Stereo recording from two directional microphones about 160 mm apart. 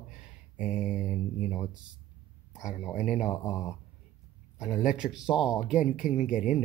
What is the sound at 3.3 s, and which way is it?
Speech, 20° left (ahead or behind).